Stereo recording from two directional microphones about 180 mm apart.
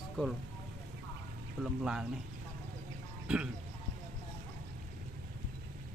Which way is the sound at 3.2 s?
5° right (ahead or behind).